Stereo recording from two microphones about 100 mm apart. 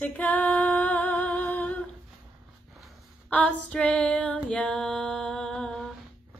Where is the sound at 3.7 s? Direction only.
10° left (ahead or behind).